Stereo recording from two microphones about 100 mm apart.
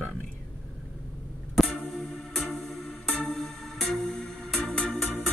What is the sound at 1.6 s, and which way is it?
Music, centre (ahead or behind).